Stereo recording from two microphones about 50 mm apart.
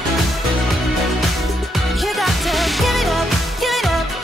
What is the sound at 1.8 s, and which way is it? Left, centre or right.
Music, centre.